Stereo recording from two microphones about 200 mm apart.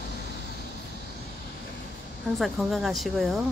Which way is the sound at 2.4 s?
Centre (ahead or behind).